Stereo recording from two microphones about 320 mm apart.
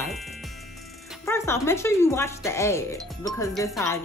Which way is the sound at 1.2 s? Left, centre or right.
Centre.